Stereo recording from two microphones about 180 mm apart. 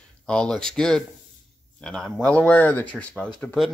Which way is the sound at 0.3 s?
5° left (ahead or behind).